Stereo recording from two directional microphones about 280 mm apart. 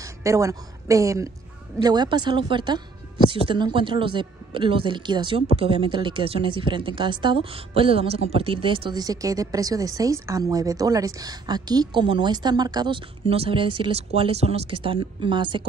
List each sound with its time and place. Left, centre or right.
0.0 s a woman's voice: centre